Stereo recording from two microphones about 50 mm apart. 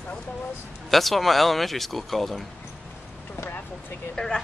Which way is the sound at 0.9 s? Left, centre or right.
Centre.